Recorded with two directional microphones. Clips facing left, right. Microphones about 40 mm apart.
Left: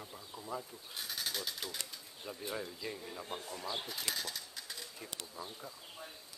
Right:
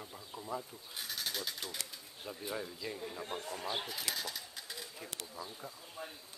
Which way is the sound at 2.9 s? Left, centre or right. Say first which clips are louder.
Right 3 dB; centre.